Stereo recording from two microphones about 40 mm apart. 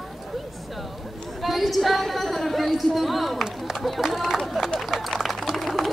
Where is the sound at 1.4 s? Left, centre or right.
Centre.